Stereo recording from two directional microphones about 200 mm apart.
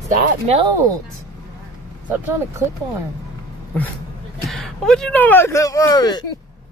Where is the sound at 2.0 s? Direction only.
10° right (ahead or behind).